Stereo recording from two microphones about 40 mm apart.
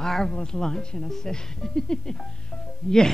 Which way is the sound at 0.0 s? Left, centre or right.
Centre.